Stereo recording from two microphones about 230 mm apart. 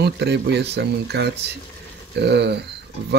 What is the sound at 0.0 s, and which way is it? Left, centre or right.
Speech, right.